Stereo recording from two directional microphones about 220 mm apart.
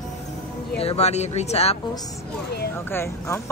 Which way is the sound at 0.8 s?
30° left (ahead or behind).